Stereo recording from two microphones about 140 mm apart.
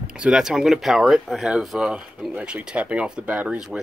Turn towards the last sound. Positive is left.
turn(degrees=-10)  # may be behind; listen again after turning